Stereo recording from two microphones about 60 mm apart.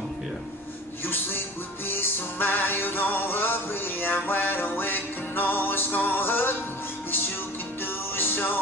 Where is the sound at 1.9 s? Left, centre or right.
Left.